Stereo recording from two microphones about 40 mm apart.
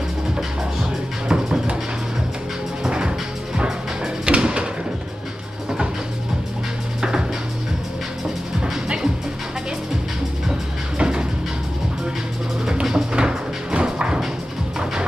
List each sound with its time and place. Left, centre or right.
1.3 s music: centre
2.9 s music: right
4.3 s a sound: right
7.0 s music: centre
8.8 s music: right
11.0 s music: right
12.8 s music: centre